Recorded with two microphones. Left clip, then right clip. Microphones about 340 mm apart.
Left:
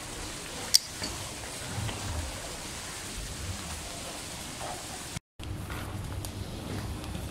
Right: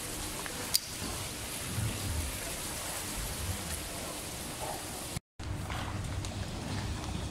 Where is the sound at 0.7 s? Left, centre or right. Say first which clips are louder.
Left 9 dB; centre.